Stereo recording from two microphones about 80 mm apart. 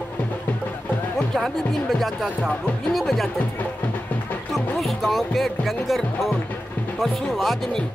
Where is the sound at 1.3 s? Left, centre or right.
Centre.